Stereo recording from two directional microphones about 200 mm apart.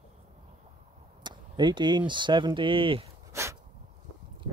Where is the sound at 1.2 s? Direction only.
20° right (ahead or behind).